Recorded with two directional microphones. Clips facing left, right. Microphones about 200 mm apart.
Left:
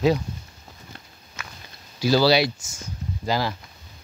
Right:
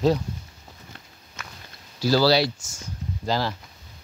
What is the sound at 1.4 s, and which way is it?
Walk, centre (ahead or behind).